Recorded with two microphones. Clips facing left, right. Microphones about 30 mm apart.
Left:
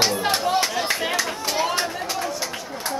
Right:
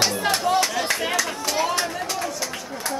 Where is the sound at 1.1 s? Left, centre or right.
Centre.